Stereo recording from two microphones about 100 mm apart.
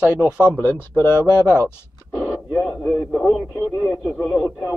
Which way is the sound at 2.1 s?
20° left (ahead or behind).